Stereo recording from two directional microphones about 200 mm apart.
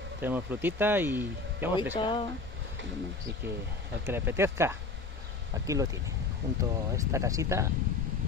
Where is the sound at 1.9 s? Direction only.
20° left (ahead or behind).